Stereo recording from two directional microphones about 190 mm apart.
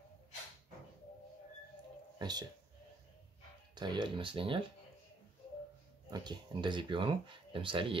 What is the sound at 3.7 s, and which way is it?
Speech, 25° right (ahead or behind).